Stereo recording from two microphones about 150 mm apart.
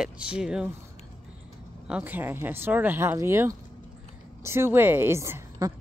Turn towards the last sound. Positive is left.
turn(degrees=-20)  # may be behind; listen again after turning